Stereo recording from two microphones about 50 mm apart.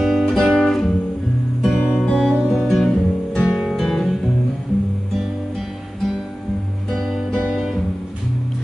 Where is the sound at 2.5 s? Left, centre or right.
Centre.